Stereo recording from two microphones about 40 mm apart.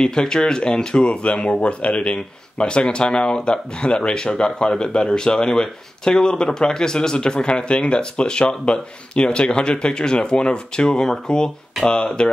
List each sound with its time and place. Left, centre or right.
0.0 s speech: centre